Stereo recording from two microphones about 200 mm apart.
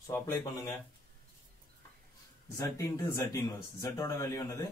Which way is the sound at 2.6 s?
15° left (ahead or behind).